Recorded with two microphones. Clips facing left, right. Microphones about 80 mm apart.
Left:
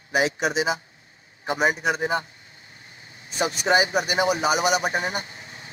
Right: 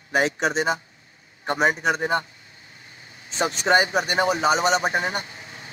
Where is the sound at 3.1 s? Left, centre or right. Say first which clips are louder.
Right 1 dB; right.